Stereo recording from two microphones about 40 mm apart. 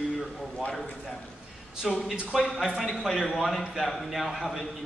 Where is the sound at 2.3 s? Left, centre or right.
Centre.